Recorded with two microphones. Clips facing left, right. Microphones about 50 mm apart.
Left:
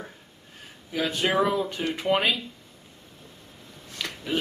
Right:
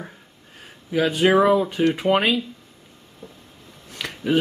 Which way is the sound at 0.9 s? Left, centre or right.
Centre.